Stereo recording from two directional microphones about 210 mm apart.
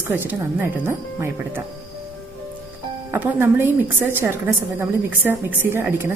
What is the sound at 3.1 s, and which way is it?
A woman's voice, 10° right (ahead or behind).